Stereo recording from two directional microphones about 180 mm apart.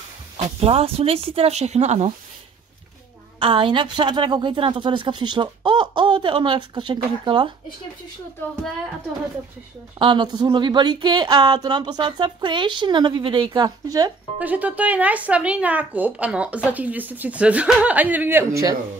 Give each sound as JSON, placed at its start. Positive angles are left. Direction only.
{"t": 0.6, "sound": "speech", "side_deg": -35}
{"t": 3.3, "sound": "a woman's voice", "side_deg": -30}
{"t": 9.9, "sound": "a woman's voice", "side_deg": -25}
{"t": 14.4, "sound": "speech", "side_deg": -10}